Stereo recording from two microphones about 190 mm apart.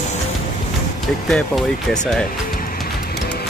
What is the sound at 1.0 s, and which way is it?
Speech, centre (ahead or behind).